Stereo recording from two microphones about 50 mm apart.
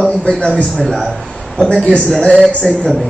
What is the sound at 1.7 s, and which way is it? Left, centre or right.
Speech, centre.